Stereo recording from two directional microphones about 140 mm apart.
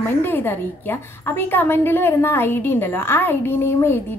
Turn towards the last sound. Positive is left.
turn(degrees=15)  # may be behind; listen again after turning